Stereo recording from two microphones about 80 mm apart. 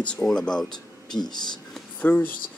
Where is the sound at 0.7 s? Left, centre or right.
Left.